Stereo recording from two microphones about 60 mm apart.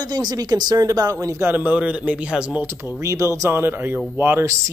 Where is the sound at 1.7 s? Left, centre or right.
Right.